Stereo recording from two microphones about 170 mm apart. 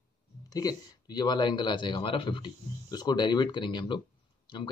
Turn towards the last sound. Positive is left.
turn(degrees=25)  # may be behind; listen again after turning